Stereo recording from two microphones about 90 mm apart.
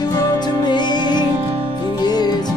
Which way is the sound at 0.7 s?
55° left (ahead or behind).